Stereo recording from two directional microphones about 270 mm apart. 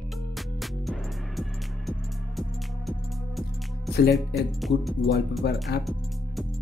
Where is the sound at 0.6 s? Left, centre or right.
Centre.